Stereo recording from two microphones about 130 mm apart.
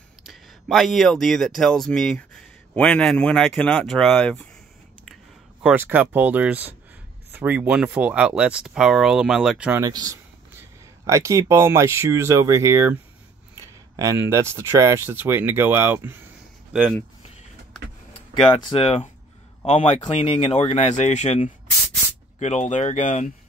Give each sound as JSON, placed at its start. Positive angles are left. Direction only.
{"t": 0.3, "sound": "speech", "side_deg": 0}
{"t": 5.6, "sound": "speech", "side_deg": -10}
{"t": 9.8, "sound": "speech", "side_deg": -30}
{"t": 13.6, "sound": "a sound", "side_deg": -25}
{"t": 14.3, "sound": "speech", "side_deg": -20}
{"t": 18.3, "sound": "speech", "side_deg": 45}
{"t": 19.6, "sound": "speech", "side_deg": 60}